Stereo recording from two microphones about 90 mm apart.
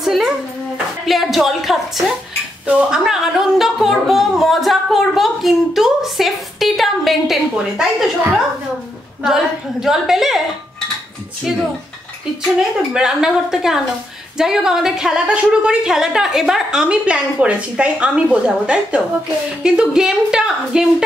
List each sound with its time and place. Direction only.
0.0 s a sound: 5° right (ahead or behind)
1.0 s speech: centre (ahead or behind)
2.6 s a woman's voice: 15° right (ahead or behind)
3.0 s a woman's voice: 5° right (ahead or behind)
9.2 s speech: 5° right (ahead or behind)
12.5 s a woman's voice: 5° right (ahead or behind)